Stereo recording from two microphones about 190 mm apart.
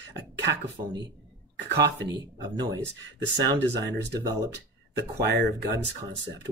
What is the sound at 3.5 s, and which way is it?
Speech, 65° right (ahead or behind).